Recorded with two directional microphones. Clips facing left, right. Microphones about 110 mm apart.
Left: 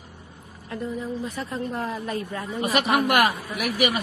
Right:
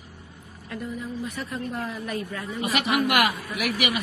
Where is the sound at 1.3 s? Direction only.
25° left (ahead or behind).